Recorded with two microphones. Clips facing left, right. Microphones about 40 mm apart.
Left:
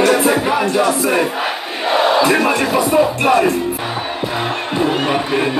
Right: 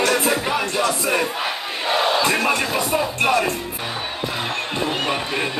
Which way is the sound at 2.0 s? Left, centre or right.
Centre.